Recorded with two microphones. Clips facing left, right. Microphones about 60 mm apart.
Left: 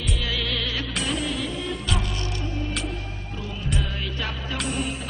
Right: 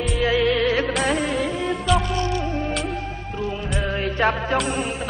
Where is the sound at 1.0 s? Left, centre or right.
Right.